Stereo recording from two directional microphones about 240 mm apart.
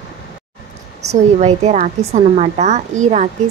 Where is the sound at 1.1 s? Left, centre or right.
Right.